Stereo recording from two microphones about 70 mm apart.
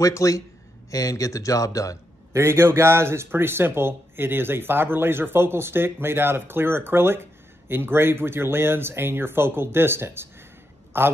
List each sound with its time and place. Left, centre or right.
0.0 s speech: left
2.3 s speech: right